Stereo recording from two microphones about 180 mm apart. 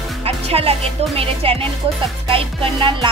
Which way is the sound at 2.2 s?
30° right (ahead or behind).